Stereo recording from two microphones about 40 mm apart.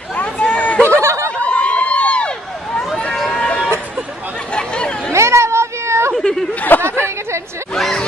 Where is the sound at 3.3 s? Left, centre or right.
Left.